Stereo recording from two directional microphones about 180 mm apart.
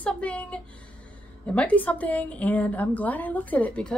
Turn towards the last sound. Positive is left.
turn(degrees=5)  # may be behind; listen again after turning